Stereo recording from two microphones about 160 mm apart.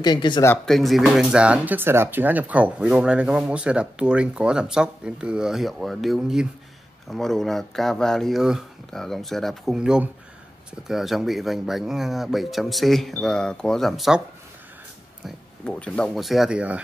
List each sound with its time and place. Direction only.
0.0 s speech: 25° left (ahead or behind)
0.7 s speech: centre (ahead or behind)
15.2 s speech: 5° left (ahead or behind)